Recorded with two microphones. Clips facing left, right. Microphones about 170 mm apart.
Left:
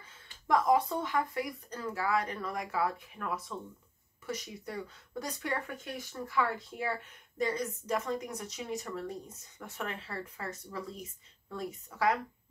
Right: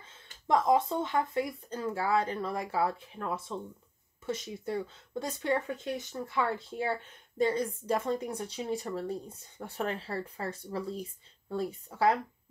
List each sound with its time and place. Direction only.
0.5 s speech: 25° right (ahead or behind)